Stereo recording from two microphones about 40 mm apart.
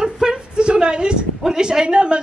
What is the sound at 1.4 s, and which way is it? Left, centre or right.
Speech, centre.